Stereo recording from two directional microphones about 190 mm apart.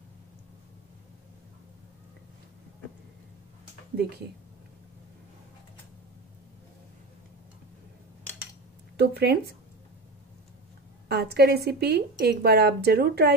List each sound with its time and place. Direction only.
8.9 s a woman's voice: 60° right (ahead or behind)
11.1 s a woman's voice: 60° right (ahead or behind)